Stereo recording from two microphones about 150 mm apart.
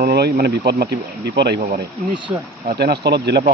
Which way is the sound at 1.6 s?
60° right (ahead or behind).